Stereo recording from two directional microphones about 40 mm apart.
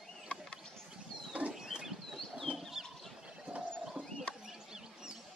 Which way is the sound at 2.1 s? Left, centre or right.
Centre.